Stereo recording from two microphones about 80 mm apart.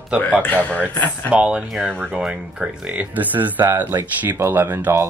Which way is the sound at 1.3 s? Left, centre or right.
Centre.